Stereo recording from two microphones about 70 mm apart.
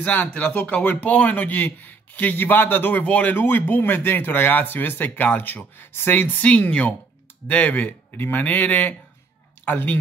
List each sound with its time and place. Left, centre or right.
0.0 s speech: left